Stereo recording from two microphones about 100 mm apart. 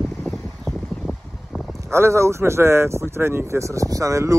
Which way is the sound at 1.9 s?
25° right (ahead or behind).